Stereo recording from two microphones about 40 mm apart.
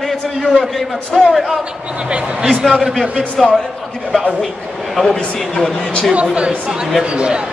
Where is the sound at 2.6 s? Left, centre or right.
Centre.